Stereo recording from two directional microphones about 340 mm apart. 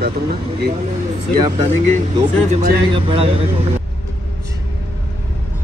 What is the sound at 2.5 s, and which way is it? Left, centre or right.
Speech, centre.